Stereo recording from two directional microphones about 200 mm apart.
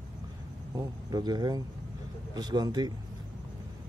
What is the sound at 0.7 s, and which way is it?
A man's voice, 20° right (ahead or behind).